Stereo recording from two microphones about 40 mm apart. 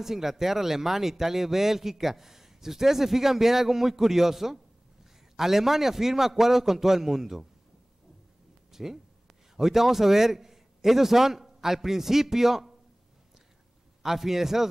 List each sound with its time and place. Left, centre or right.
0.0 s speech: centre
8.7 s a man's voice: centre
14.0 s speech: centre